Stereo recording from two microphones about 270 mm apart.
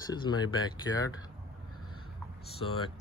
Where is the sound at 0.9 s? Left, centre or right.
Left.